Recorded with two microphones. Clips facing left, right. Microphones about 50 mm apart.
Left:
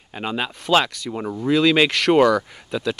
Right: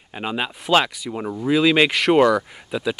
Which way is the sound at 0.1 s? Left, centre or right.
Centre.